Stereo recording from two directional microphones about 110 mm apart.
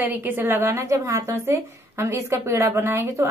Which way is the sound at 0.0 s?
20° right (ahead or behind).